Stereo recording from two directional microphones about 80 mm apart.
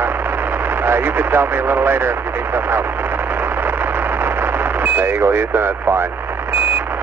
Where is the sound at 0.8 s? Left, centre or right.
Right.